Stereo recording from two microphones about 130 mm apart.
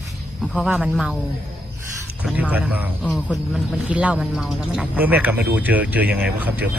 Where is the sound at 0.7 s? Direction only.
5° right (ahead or behind).